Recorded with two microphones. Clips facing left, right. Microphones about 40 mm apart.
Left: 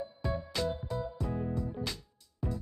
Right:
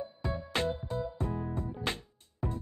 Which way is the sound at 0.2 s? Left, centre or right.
Right.